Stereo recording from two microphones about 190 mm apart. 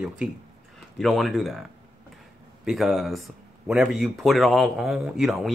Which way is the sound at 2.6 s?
Centre (ahead or behind).